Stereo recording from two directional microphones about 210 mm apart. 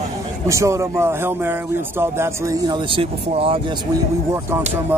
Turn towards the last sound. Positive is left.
turn(degrees=-25)  # may be behind; listen again after turning